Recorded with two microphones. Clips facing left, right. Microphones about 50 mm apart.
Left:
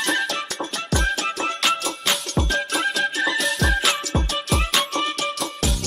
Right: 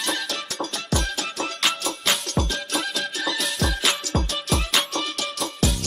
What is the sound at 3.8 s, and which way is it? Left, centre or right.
Music, centre.